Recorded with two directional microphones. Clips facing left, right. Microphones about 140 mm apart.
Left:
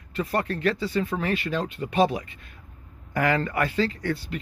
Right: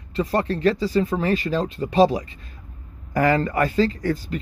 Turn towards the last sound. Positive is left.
turn(degrees=-40)  # may be behind; listen again after turning